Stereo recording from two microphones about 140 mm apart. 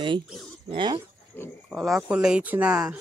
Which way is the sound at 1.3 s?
15° left (ahead or behind).